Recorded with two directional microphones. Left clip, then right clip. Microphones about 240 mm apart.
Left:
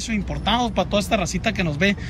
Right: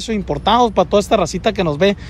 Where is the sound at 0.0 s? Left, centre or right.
Right.